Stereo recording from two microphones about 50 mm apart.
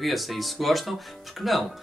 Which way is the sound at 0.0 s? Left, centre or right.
Centre.